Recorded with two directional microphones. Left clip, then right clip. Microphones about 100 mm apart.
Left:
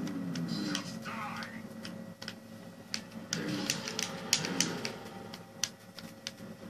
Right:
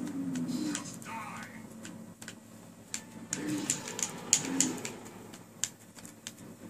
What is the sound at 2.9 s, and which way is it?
Typewriter, 10° left (ahead or behind).